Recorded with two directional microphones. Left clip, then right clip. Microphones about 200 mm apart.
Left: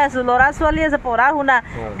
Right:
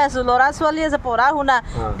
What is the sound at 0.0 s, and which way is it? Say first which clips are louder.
Speech: left 1 dB; centre (ahead or behind).